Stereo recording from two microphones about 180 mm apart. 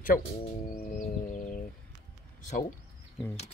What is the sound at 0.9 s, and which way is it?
Music, 50° left (ahead or behind).